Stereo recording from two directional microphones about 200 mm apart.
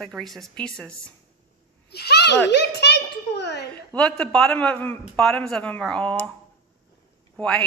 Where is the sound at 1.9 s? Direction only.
55° left (ahead or behind).